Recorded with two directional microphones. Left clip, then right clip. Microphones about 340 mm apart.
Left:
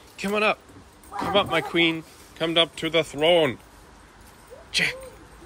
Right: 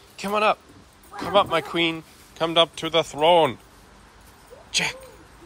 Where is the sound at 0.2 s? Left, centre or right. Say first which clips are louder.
Right 2 dB; centre.